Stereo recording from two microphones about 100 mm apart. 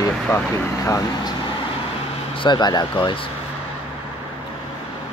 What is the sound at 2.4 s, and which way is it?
Speech, 45° left (ahead or behind).